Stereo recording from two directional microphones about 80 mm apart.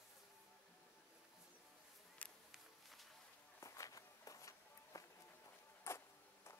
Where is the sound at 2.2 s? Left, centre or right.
Centre.